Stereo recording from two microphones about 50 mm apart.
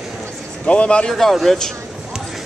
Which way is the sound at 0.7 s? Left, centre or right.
Left.